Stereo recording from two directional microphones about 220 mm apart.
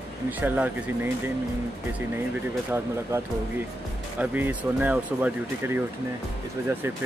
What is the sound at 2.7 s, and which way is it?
Speech, 10° right (ahead or behind).